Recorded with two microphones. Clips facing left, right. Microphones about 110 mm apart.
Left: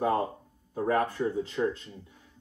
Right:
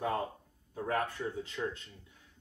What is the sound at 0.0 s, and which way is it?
Speech, 40° left (ahead or behind).